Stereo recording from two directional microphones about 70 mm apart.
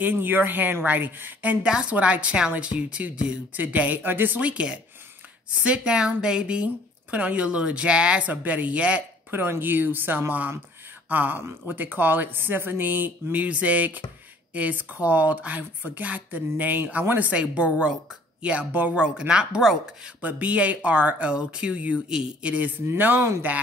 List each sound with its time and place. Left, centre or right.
0.0 s a woman's voice: right
9.3 s a woman's voice: right; by 19.8 s centre
20.2 s a woman's voice: right